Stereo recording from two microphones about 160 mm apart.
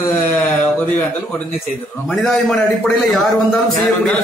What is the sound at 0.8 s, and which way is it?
A man's voice, 10° left (ahead or behind).